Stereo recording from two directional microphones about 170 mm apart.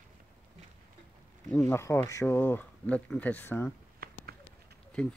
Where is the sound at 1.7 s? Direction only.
15° left (ahead or behind).